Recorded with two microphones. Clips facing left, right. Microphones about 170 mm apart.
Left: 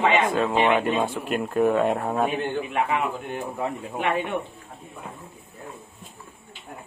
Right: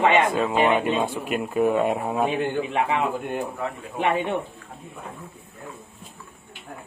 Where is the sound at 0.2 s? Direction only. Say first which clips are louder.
Right 1 dB; 10° right (ahead or behind).